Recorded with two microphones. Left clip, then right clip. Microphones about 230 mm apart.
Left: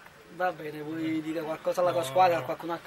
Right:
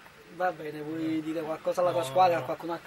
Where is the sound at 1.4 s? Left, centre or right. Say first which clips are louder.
Even; right.